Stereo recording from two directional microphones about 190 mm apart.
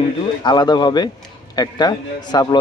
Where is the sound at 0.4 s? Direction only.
20° left (ahead or behind).